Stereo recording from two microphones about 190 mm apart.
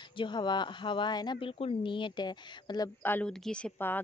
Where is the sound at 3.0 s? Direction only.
5° left (ahead or behind).